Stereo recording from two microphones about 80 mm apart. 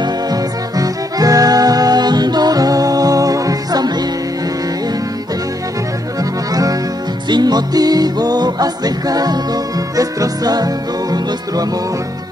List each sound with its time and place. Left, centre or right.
0.0 s music: right
6.1 s accordion: right
7.2 s music: right